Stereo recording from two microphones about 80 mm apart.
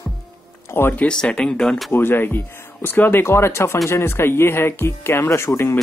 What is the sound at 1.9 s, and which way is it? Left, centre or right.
Speech, left.